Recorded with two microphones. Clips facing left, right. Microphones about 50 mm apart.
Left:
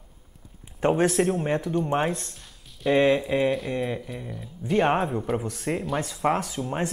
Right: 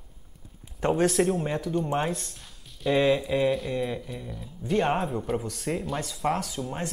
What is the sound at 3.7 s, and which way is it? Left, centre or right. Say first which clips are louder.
Speech: left 1 dB; centre.